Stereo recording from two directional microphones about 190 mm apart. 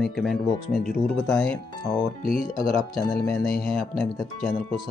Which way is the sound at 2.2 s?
50° left (ahead or behind).